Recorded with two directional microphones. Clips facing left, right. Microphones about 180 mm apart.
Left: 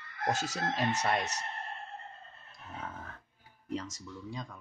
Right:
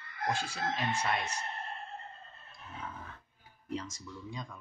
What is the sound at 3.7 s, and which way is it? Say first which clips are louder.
Speech: left 1 dB; 40° left (ahead or behind).